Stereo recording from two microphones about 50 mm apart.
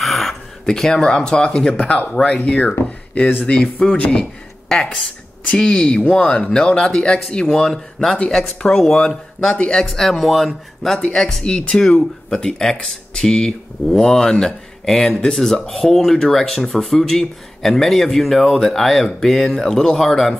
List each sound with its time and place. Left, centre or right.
0.0 s a sound: centre
0.7 s speech: centre
1.7 s speech: left
5.6 s speech: left
9.8 s a man's voice: centre
11.4 s a man's voice: centre